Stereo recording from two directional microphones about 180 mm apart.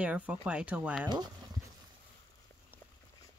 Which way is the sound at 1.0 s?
25° right (ahead or behind).